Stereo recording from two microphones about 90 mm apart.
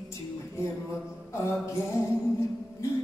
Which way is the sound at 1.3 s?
30° left (ahead or behind).